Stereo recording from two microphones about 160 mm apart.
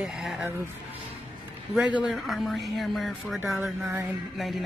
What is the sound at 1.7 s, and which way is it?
Speech, 5° right (ahead or behind).